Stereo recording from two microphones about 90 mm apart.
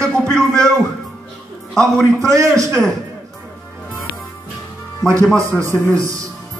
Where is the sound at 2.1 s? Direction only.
35° right (ahead or behind).